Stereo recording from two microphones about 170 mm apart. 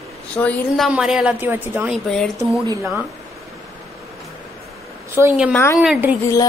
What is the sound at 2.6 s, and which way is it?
Speech, 20° right (ahead or behind).